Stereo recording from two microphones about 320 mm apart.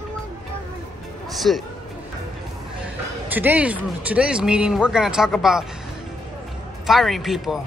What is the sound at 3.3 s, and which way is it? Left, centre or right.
Speech, centre.